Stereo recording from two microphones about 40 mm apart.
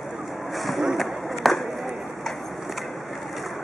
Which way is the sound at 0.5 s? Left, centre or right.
Centre.